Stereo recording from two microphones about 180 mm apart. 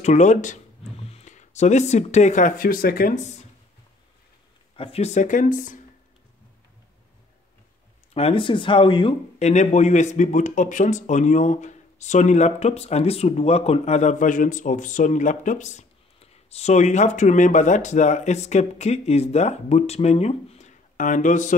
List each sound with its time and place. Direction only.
0.0 s speech: 40° left (ahead or behind)
4.7 s speech: 35° left (ahead or behind)
8.1 s speech: 35° left (ahead or behind)